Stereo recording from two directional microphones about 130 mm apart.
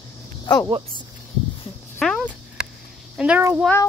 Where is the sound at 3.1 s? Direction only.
10° right (ahead or behind).